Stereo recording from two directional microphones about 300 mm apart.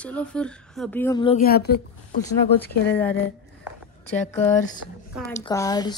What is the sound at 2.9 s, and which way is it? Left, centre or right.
Speech, centre.